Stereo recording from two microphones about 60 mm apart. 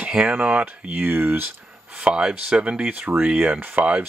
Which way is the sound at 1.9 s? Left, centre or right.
Centre.